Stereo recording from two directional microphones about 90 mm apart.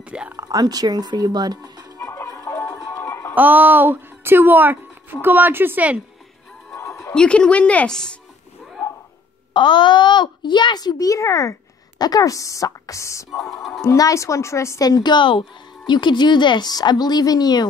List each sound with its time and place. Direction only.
0.4 s speech: 40° right (ahead or behind)
2.0 s music: 25° left (ahead or behind)
3.3 s a woman's voice: 20° right (ahead or behind)
6.7 s a sound: 30° left (ahead or behind)
7.2 s speech: 10° left (ahead or behind)
9.5 s a child's voice: 65° left (ahead or behind); by 13.5 s 35° left (ahead or behind)
13.5 s speech: centre (ahead or behind)
13.8 s speech: 35° left (ahead or behind)
14.9 s a child's voice: 50° left (ahead or behind)